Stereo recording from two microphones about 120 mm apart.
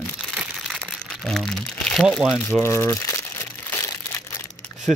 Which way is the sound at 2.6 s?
20° left (ahead or behind).